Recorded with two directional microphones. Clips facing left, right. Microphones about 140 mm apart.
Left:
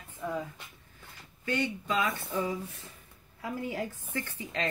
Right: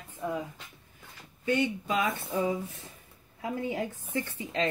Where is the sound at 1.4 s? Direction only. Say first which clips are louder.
Right 4 dB; 20° right (ahead or behind).